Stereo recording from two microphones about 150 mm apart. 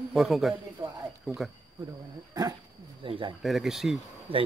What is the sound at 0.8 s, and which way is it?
Speech, 20° right (ahead or behind).